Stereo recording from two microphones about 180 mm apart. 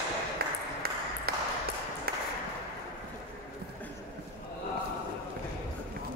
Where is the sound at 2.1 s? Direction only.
60° right (ahead or behind).